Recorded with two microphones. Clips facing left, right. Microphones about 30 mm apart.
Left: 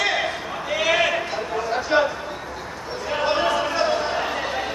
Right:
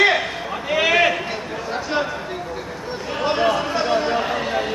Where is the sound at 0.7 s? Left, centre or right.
Centre.